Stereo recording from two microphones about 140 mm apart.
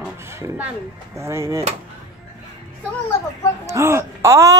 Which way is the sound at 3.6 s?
20° right (ahead or behind).